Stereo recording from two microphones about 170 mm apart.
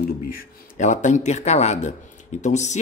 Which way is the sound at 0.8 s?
45° left (ahead or behind).